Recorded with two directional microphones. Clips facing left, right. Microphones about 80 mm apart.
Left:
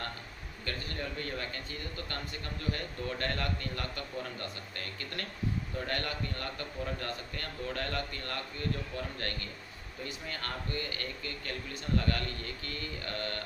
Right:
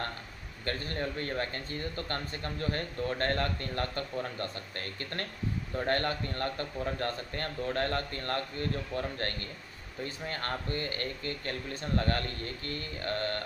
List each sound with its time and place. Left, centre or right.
0.7 s speech: right